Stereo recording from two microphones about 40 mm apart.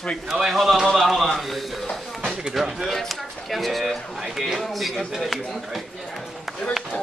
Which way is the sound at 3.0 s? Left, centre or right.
Centre.